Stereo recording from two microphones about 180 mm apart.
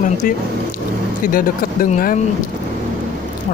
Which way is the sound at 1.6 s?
50° left (ahead or behind).